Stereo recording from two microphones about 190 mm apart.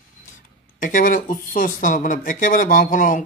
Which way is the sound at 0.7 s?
45° left (ahead or behind).